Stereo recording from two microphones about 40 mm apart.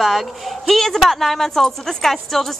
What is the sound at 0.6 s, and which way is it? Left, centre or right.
A woman's voice, centre.